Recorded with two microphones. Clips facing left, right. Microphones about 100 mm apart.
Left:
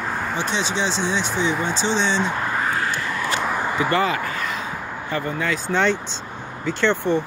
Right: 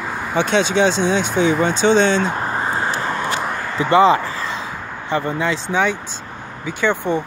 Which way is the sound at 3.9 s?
20° right (ahead or behind).